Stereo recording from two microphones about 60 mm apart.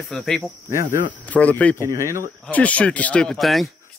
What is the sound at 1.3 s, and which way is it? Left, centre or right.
Speech, left.